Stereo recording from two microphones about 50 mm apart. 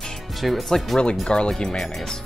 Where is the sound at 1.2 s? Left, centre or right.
Centre.